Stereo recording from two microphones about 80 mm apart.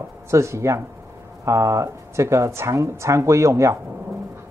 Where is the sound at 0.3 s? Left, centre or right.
Right.